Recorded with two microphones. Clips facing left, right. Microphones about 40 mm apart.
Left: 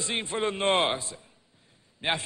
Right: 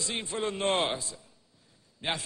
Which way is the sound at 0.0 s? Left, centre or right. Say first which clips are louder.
Left 3 dB; left.